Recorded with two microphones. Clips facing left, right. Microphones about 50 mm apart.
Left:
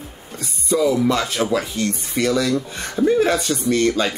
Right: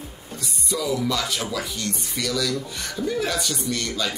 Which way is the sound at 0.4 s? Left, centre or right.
Left.